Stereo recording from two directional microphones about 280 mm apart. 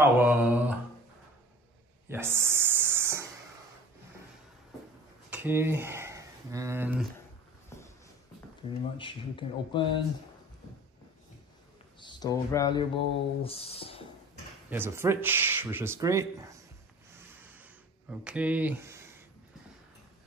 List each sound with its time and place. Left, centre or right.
0.0 s mantra: centre
2.0 s a sound: centre
5.3 s speech: centre
7.7 s a sound: centre
8.9 s speech: centre
12.0 s speech: centre
14.7 s speech: centre
17.1 s snort: centre
18.2 s speech: centre